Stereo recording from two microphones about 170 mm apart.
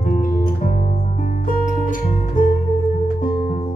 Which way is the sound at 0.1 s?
50° left (ahead or behind).